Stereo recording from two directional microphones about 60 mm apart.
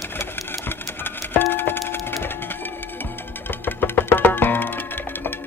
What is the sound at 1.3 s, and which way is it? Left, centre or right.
Music, left.